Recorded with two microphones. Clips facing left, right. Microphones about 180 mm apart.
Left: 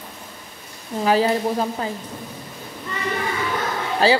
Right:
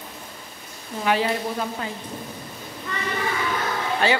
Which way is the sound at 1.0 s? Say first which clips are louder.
Left 4 dB; 35° left (ahead or behind).